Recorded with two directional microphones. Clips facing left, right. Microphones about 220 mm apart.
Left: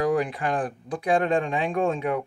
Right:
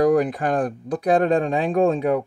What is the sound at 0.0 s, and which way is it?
Speech, 45° right (ahead or behind).